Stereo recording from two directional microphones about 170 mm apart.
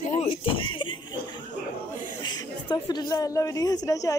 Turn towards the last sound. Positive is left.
turn(degrees=20)  # may be behind; listen again after turning